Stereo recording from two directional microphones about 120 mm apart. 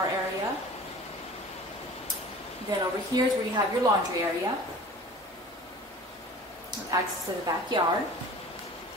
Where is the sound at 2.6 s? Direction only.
30° right (ahead or behind).